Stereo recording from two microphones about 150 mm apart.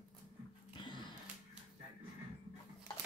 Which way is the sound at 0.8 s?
30° left (ahead or behind).